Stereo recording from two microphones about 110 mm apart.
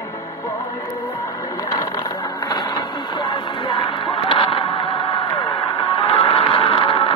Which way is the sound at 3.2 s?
45° left (ahead or behind).